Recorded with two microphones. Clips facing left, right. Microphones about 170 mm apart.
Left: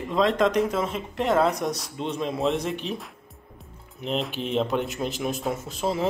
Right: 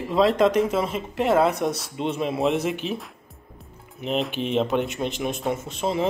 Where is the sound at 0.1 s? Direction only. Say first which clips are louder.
Right 3 dB; 5° right (ahead or behind).